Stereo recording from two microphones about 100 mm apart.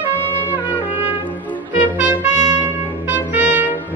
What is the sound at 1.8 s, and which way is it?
Trumpet, 15° right (ahead or behind).